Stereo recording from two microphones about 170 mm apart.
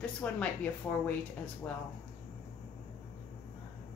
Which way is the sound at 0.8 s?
10° left (ahead or behind).